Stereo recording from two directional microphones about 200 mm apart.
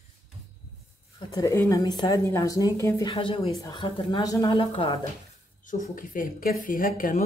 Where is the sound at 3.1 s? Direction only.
25° left (ahead or behind).